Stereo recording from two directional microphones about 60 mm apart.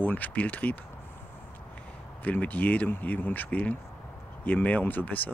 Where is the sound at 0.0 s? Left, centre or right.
Left.